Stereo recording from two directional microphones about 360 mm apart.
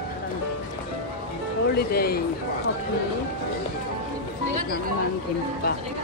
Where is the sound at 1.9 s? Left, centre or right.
Left.